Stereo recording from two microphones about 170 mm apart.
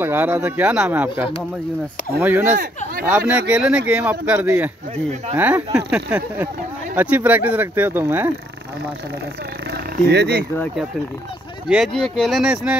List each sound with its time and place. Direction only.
0.0 s speech: 10° right (ahead or behind)
9.7 s a sound: 70° right (ahead or behind)
11.7 s speech: centre (ahead or behind)